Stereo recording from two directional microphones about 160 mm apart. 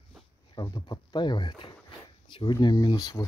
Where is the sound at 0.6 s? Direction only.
25° left (ahead or behind).